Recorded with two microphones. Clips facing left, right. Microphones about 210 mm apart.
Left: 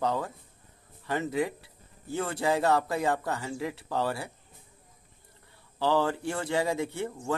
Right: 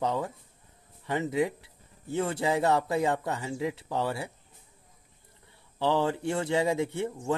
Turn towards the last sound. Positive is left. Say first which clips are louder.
# right 2 dB
turn(degrees=-20)  # may be behind; listen again after turning